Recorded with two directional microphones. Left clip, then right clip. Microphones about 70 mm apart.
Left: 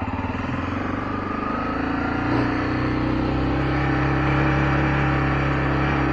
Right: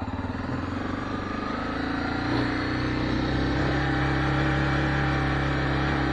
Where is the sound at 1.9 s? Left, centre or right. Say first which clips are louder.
Left 4 dB; right.